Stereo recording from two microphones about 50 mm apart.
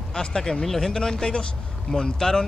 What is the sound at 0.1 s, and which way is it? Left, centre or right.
Speech, centre.